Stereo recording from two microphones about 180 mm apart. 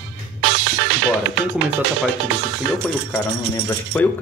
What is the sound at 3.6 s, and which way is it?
Speech, 10° left (ahead or behind).